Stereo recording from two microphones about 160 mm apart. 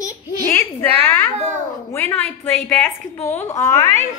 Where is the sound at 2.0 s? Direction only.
10° left (ahead or behind).